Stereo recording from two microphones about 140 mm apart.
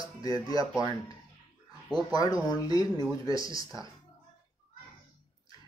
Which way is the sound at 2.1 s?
25° left (ahead or behind).